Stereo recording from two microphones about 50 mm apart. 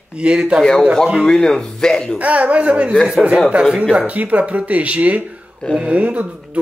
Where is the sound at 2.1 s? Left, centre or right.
Right.